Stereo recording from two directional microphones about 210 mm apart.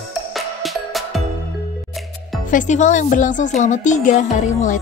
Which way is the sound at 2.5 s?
35° left (ahead or behind).